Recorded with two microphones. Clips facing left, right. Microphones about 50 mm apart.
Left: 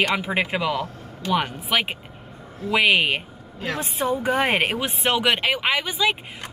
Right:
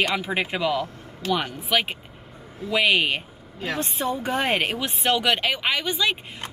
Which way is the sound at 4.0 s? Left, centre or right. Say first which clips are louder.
Left 5 dB; centre.